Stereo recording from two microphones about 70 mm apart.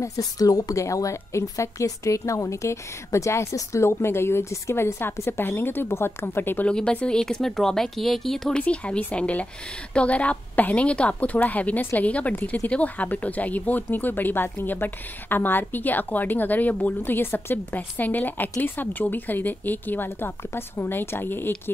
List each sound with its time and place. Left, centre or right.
0.0 s a woman's voice: left
6.7 s speech: centre
8.5 s a woman's voice: centre